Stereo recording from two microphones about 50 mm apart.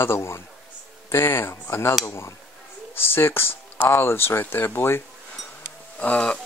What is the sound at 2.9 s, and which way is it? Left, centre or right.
Speech, left.